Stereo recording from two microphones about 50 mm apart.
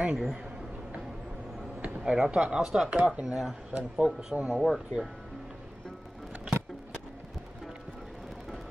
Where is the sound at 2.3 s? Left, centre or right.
Centre.